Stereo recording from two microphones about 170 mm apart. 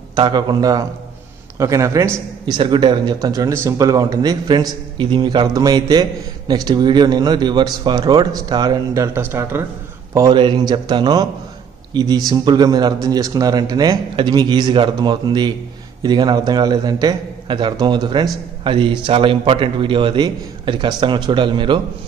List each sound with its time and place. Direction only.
0.1 s speech: 25° right (ahead or behind)
10.1 s speech: 25° right (ahead or behind)